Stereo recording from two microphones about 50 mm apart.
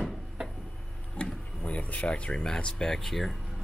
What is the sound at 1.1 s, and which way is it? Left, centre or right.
Speech, left.